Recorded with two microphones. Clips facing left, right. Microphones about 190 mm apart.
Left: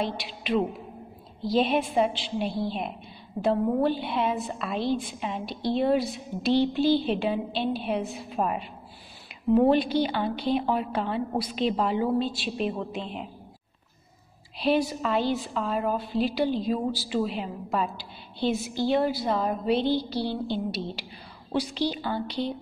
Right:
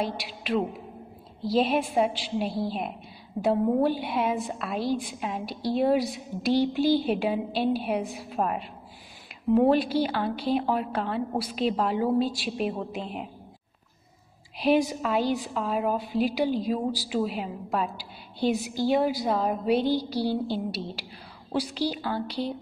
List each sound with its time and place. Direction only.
0.0 s a woman's voice: 10° right (ahead or behind)
14.6 s a woman's voice: 15° right (ahead or behind)